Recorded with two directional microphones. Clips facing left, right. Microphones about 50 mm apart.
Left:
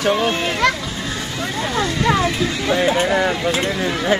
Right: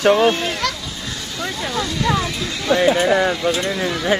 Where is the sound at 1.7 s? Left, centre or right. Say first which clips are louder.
Left 2 dB; left.